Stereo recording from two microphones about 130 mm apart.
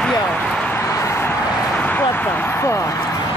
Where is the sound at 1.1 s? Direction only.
20° left (ahead or behind).